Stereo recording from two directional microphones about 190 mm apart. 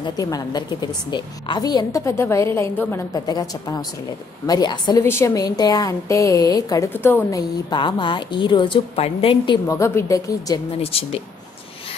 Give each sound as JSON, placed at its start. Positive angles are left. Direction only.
{"t": 0.0, "sound": "a woman's voice", "side_deg": 20}
{"t": 9.7, "sound": "a woman's voice", "side_deg": 15}
{"t": 10.8, "sound": "speech", "side_deg": 30}